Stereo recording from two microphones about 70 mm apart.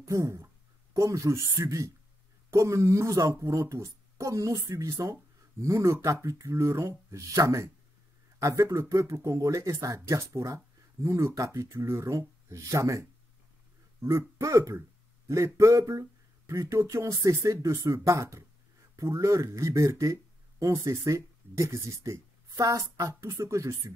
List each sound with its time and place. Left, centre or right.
0.0 s speech: right